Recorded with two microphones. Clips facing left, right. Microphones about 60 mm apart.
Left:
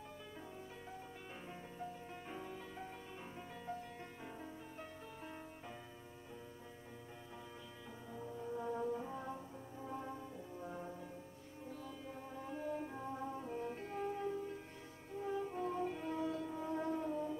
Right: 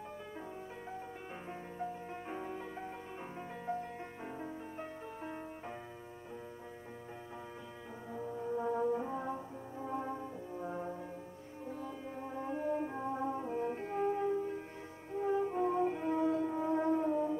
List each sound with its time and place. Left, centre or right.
1.8 s music: right
4.4 s music: right
8.1 s brass instrument: right
11.6 s music: right